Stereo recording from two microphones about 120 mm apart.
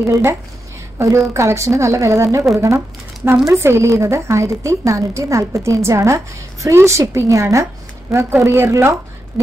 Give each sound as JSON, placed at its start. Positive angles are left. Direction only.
{"t": 0.0, "sound": "a woman's voice", "side_deg": -20}